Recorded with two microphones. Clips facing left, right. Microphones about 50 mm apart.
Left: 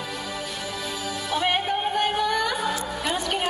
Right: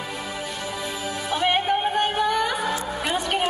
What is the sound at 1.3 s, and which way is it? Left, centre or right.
Music, centre.